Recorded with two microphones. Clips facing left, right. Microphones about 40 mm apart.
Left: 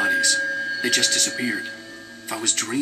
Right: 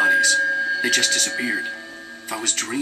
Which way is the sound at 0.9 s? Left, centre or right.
Centre.